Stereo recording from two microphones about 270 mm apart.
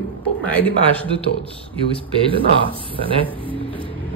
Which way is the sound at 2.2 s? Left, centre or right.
Centre.